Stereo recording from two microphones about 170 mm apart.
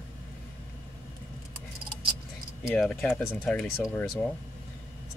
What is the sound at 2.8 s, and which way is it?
Speech, 5° left (ahead or behind).